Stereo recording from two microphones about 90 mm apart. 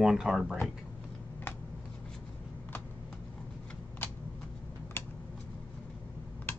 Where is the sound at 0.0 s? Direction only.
5° right (ahead or behind).